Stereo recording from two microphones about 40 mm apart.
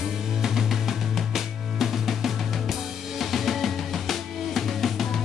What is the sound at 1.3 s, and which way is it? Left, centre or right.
Drum, centre.